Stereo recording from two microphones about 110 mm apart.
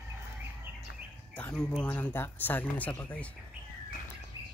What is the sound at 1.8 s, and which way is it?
Speech, 15° left (ahead or behind).